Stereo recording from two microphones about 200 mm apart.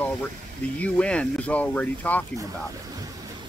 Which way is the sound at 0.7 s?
5° left (ahead or behind).